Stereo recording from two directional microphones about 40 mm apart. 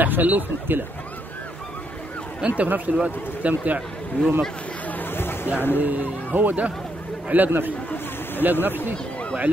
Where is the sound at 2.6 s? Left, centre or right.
Right.